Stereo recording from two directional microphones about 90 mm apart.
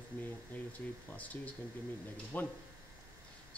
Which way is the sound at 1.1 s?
15° left (ahead or behind).